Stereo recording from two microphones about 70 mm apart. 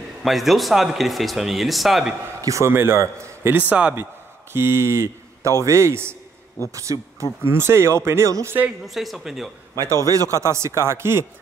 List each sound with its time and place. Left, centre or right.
0.2 s speech: centre
2.4 s a man's voice: right
2.7 s a man's voice: right
3.5 s speech: centre
3.9 s a man's voice: right
7.4 s a man's voice: right
8.8 s speech: centre
9.8 s a man's voice: right
10.3 s a man's voice: right